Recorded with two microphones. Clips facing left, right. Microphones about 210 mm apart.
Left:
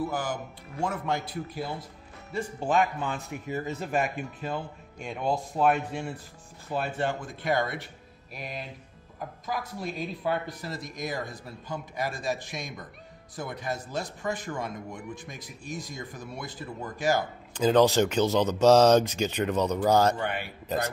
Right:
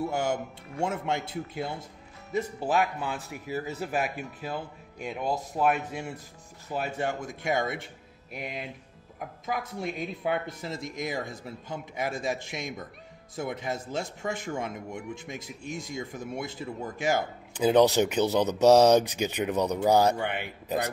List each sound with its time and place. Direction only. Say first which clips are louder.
0.1 s speech: right 3 dB; 25° right (ahead or behind)
2.6 s a man's voice: left 3 dB; 5° right (ahead or behind)
8.3 s speech: right 2 dB; 20° right (ahead or behind)
17.6 s speech: even; 10° right (ahead or behind)